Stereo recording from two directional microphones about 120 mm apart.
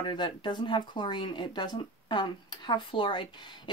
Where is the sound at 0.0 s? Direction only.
40° left (ahead or behind).